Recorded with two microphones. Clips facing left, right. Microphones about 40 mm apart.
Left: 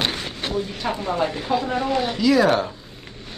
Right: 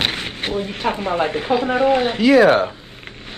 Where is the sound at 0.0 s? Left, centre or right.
Right.